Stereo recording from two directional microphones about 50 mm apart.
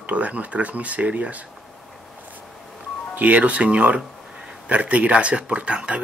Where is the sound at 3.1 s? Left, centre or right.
Right.